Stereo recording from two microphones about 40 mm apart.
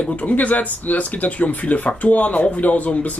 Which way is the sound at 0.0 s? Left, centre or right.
Left.